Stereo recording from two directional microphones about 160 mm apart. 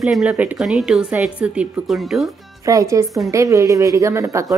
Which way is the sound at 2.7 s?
20° right (ahead or behind).